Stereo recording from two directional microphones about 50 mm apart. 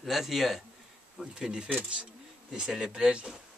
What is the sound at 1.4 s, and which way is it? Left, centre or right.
Speech, centre.